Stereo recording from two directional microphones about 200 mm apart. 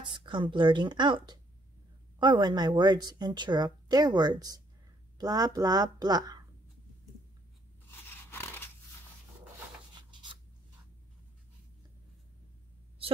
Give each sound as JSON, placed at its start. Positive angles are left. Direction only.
{"t": 0.0, "sound": "speech", "side_deg": -25}
{"t": 8.3, "sound": "crunch", "side_deg": 10}